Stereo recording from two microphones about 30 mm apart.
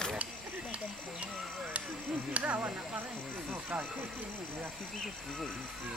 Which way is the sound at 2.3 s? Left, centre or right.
Right.